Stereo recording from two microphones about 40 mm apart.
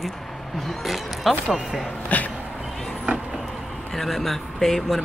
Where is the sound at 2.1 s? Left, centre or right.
Left.